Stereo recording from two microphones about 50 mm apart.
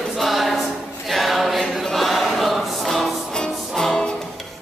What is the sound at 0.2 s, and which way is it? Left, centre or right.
Choir, centre.